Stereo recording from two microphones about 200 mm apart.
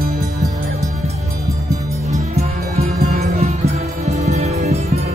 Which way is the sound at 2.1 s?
35° right (ahead or behind).